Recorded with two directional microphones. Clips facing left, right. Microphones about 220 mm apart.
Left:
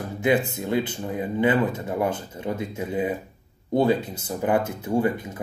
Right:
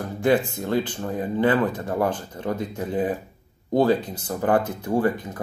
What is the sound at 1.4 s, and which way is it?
Speech, 20° left (ahead or behind).